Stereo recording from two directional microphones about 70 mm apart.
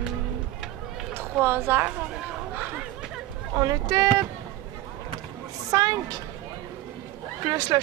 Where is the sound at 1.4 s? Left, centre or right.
Right.